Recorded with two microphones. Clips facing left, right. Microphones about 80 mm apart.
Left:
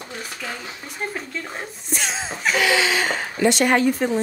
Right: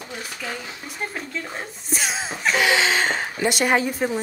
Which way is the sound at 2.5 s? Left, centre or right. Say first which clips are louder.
Even; right.